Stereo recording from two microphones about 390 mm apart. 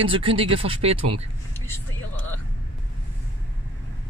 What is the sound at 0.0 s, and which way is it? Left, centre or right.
Speech, centre.